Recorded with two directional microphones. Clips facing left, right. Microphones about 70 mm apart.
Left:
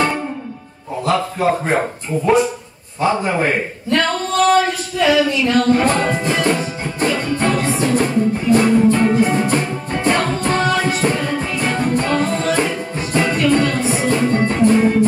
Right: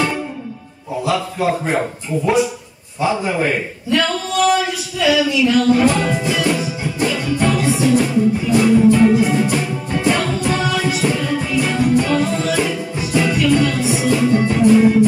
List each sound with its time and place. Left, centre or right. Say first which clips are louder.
1.0 s speech: left 2 dB; left
3.3 s a man's voice: left 1 dB; left
3.9 s female singing: even; left
4.4 s speech: left 2 dB; left
7.0 s music: even; left